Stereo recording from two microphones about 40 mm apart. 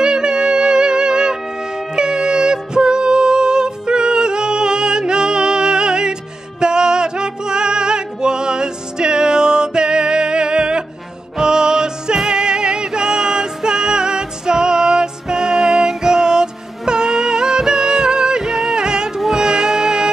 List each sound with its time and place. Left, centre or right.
0.0 s music: right